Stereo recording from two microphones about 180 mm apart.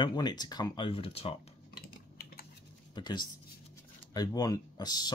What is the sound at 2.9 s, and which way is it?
Speech, 25° left (ahead or behind).